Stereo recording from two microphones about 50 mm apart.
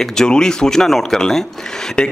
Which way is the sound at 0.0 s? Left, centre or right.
Centre.